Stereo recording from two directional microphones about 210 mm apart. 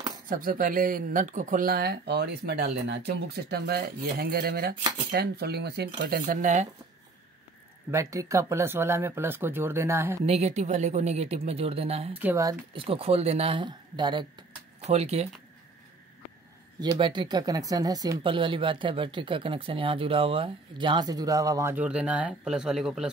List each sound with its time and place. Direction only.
0.3 s speech: 40° right (ahead or behind)
7.9 s speech: 15° right (ahead or behind)
10.2 s speech: 30° right (ahead or behind)
12.1 s speech: 10° right (ahead or behind); by 15.2 s 30° right (ahead or behind)
16.8 s speech: 20° right (ahead or behind); by 23.0 s 5° right (ahead or behind)